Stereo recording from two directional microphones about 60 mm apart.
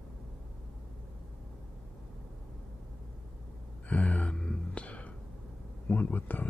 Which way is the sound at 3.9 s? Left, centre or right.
Left.